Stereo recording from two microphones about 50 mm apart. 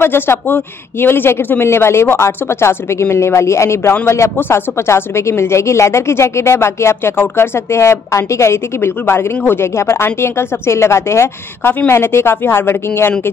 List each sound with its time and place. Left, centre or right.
0.0 s speech: left
4.4 s speech: left